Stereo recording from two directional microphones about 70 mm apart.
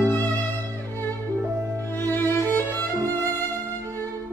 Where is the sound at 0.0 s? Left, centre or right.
Left.